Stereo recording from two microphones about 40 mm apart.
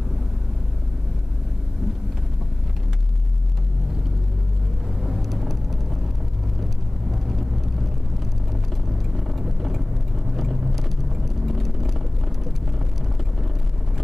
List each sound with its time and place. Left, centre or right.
5.0 s vehicle: centre
7.1 s vehicle: centre
9.1 s vehicle: centre